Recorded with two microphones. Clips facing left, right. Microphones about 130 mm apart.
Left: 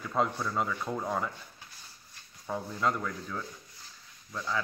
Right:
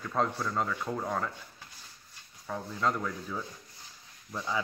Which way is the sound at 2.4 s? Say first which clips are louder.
Left 1 dB; 5° left (ahead or behind).